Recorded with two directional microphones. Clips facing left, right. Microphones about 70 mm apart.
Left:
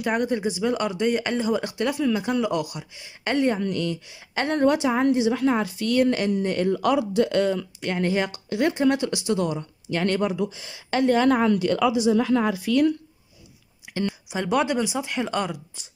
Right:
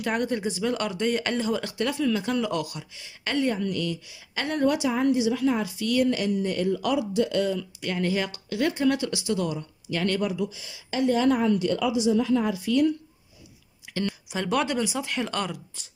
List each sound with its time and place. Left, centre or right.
0.0 s speech: centre; by 10.8 s left
10.9 s a woman's voice: left
13.9 s speech: centre